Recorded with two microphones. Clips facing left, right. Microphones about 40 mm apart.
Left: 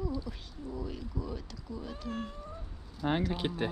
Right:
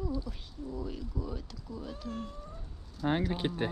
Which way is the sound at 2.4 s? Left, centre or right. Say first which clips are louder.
Left 3 dB; centre.